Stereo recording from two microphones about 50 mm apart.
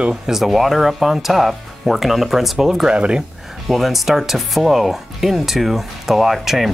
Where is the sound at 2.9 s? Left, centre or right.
Centre.